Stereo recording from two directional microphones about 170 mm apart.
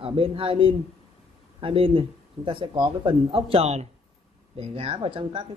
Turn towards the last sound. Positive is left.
turn(degrees=-30)  # may be behind; listen again after turning